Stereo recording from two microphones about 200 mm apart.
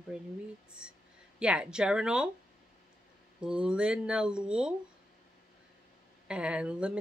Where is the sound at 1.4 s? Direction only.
5° right (ahead or behind).